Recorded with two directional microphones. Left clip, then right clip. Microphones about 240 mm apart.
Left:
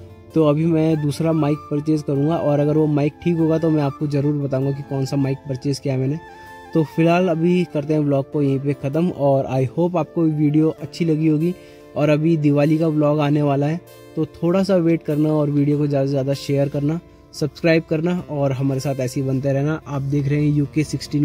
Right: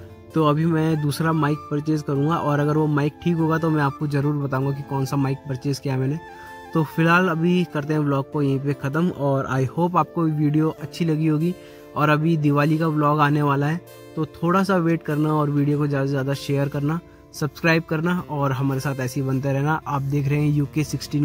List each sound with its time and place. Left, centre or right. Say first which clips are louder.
0.3 s speech: left 3 dB; centre